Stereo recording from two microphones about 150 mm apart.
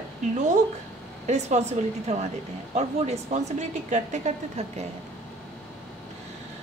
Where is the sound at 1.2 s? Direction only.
50° right (ahead or behind).